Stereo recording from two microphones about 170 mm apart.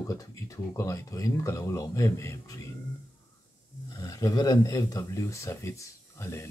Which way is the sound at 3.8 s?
20° left (ahead or behind).